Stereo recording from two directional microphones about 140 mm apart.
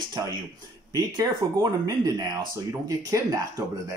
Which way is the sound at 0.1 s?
30° right (ahead or behind).